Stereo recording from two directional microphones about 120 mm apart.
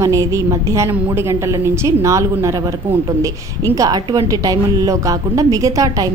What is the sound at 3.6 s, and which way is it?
A woman's voice, 30° right (ahead or behind).